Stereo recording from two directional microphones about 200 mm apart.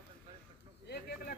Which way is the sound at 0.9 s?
55° left (ahead or behind).